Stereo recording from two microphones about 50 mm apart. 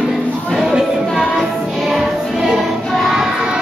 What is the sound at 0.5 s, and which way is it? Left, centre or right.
Music, centre.